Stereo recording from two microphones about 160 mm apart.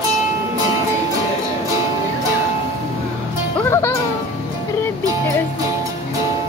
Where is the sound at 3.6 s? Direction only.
15° left (ahead or behind).